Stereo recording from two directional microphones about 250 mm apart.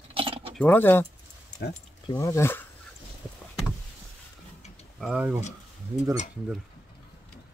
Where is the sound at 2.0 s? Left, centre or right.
Centre.